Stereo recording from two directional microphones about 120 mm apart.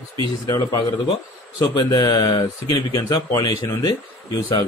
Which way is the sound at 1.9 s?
35° left (ahead or behind).